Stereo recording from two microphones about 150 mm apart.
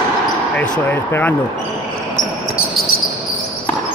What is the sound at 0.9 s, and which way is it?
Speech, 10° left (ahead or behind).